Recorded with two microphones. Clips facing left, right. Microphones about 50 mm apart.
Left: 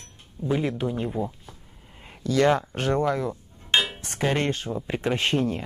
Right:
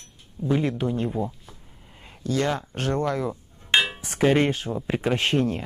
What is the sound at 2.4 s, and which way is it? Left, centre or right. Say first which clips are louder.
Speech: left 6 dB; left.